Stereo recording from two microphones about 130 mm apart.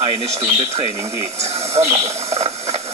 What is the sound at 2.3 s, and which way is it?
Hiss, 55° right (ahead or behind).